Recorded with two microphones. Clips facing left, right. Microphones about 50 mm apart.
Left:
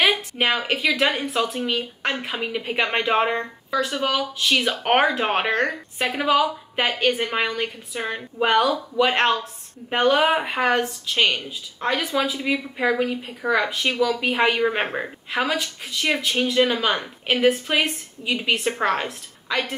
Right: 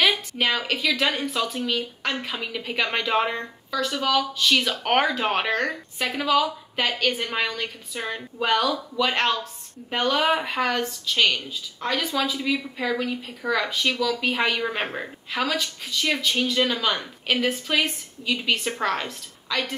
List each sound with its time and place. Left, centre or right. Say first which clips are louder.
0.0 s a woman's voice: left 2 dB; left